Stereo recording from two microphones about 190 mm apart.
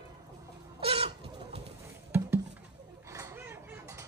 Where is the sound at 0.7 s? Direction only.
30° right (ahead or behind).